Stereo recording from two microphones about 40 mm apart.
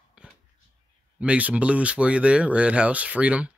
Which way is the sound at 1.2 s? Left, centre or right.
Right.